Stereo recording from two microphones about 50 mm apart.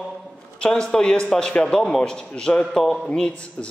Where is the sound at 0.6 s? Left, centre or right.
Centre.